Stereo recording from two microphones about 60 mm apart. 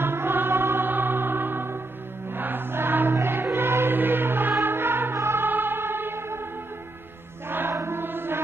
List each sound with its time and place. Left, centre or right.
0.0 s music: right
2.3 s choir: right
5.1 s music: right
7.4 s chant: right
7.7 s choir: right